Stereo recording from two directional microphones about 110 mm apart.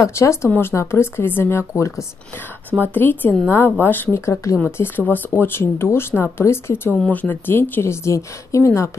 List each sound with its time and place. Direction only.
0.0 s speech: 25° left (ahead or behind)